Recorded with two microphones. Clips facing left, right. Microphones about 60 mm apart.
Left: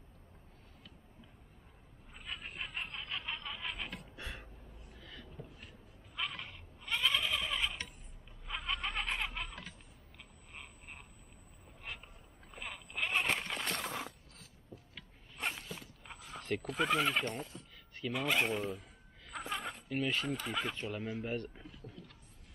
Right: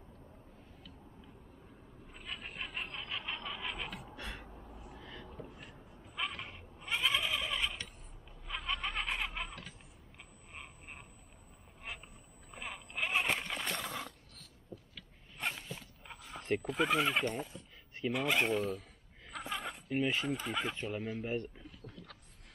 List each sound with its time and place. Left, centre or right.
2.1 s snicker: centre
4.2 s gasp: centre
4.9 s a sound: right
5.6 s bleat: centre
7.2 s goat: centre
8.5 s a sound: centre
12.4 s a sound: centre
15.0 s mechanisms: centre
16.6 s speech: centre
19.3 s a sound: centre
19.9 s speech: centre
20.2 s speech: centre